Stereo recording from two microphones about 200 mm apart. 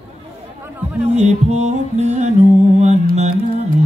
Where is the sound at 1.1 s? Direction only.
35° right (ahead or behind).